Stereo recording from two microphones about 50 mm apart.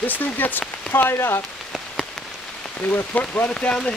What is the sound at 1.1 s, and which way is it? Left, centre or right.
Speech, left.